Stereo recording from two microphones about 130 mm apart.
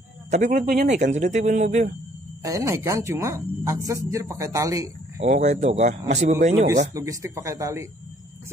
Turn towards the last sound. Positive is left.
turn(degrees=-25)  # may be behind; listen again after turning